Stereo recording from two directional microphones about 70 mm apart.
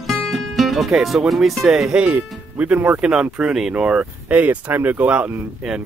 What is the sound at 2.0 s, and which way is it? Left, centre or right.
Speech, centre.